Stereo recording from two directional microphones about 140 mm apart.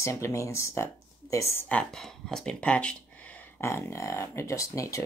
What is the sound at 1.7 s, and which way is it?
Speech, 5° left (ahead or behind).